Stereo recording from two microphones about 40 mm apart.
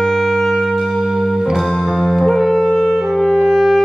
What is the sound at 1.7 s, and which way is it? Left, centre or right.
Music, centre.